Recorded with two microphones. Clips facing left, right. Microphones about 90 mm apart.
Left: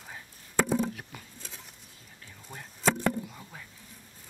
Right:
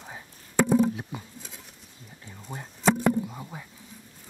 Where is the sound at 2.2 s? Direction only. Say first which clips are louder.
Right 6 dB; 30° right (ahead or behind).